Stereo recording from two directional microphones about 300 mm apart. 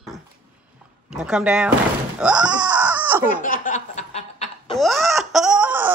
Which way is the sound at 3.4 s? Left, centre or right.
Left.